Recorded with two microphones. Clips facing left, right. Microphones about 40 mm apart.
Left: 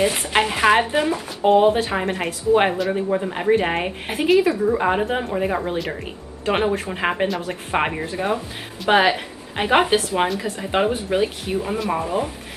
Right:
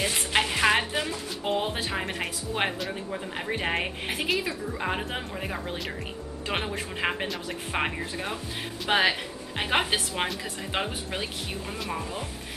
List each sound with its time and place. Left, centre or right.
0.0 s a woman's voice: centre
2.9 s speech: left
3.5 s a woman's voice: centre
6.4 s a woman's voice: centre